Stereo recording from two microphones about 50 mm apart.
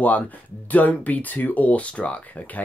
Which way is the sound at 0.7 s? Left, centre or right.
Left.